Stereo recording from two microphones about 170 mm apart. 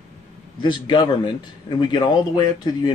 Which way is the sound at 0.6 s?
25° left (ahead or behind).